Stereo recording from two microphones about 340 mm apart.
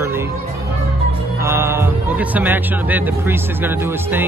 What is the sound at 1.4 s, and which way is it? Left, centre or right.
Speech, centre.